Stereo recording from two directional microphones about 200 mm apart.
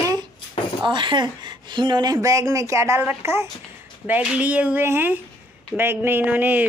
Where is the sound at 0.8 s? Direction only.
25° right (ahead or behind).